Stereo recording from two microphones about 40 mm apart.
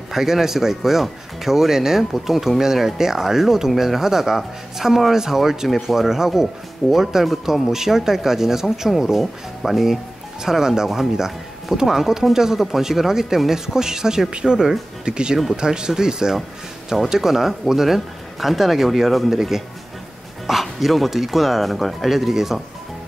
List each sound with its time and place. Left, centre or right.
0.1 s speech: centre
20.5 s bow-wow: centre
20.8 s speech: centre